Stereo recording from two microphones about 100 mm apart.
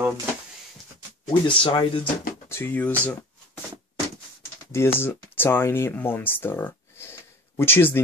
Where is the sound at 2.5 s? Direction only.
20° left (ahead or behind).